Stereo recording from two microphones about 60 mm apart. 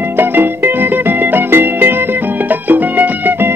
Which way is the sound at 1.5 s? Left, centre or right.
Right.